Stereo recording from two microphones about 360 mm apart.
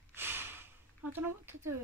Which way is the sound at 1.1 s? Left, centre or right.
Centre.